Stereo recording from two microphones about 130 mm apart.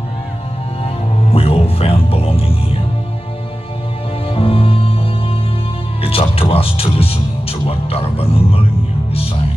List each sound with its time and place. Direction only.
1.3 s music: 50° left (ahead or behind)
4.3 s music: 45° left (ahead or behind)
6.0 s music: 45° left (ahead or behind)